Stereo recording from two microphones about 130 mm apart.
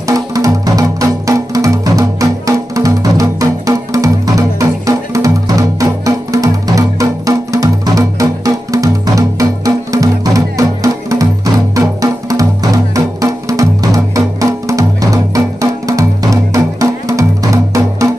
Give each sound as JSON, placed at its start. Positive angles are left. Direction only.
{"t": 0.0, "sound": "music", "side_deg": -25}